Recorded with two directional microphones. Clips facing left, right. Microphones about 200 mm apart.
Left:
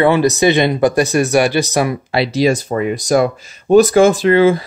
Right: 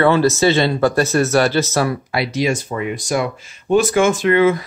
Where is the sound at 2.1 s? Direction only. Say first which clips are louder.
Left 7 dB; 30° left (ahead or behind).